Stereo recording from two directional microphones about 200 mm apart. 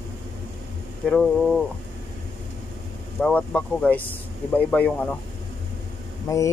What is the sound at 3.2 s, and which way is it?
A man's voice, 5° left (ahead or behind).